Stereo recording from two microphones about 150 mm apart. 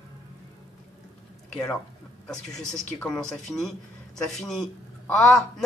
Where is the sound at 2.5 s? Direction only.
5° left (ahead or behind).